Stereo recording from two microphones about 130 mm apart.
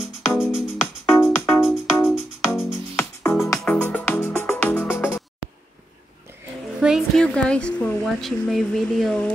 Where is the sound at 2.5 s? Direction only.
20° left (ahead or behind).